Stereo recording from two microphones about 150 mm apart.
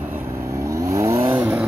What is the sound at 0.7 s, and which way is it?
Vehicle, 20° right (ahead or behind).